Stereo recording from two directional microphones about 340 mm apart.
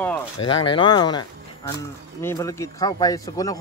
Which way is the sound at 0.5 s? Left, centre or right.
Centre.